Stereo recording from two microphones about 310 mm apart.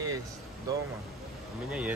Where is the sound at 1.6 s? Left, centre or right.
Centre.